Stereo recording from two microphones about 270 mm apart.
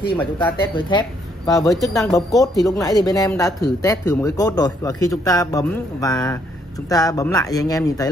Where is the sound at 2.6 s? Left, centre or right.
Centre.